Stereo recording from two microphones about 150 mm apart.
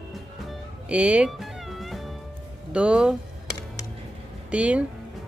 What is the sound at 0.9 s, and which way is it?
Cat, 10° right (ahead or behind).